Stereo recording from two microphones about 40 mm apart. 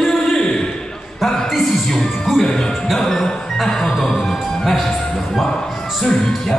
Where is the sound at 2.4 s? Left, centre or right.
Centre.